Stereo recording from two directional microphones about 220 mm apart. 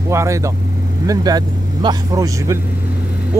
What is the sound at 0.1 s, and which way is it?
Speech, 15° right (ahead or behind).